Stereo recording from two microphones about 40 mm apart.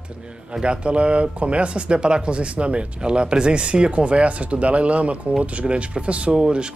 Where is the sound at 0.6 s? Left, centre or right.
Right.